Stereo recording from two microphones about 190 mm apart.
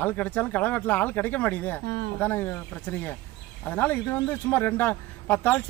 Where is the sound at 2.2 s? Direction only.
10° left (ahead or behind).